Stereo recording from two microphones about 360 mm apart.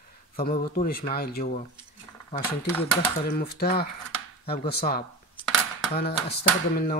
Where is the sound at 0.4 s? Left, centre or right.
Left.